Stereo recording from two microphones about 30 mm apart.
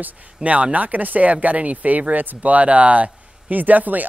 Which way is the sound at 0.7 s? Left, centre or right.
Right.